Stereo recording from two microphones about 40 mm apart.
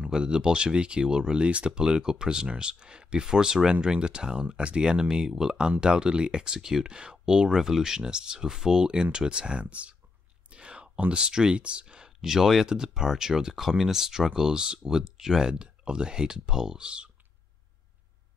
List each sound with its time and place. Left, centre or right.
0.0 s speech: right
10.5 s a sound: right
11.1 s speech: right
15.6 s speech: right